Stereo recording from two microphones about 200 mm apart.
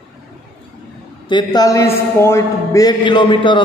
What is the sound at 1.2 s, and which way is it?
A man's voice, 20° left (ahead or behind).